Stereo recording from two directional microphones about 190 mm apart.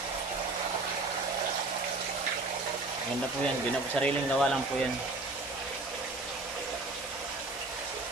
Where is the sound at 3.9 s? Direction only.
5° left (ahead or behind).